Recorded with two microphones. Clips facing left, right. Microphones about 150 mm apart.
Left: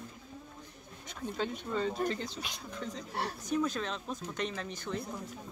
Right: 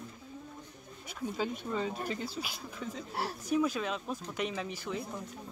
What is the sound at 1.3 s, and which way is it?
Speech, 5° right (ahead or behind).